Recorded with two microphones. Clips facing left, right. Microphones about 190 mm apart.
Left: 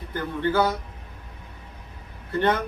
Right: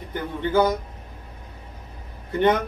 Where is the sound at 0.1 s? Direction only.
15° right (ahead or behind).